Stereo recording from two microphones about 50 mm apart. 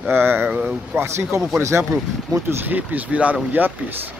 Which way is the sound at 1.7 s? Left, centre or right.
Right.